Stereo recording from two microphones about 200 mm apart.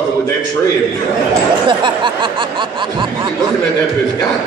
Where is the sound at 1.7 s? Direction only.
25° right (ahead or behind).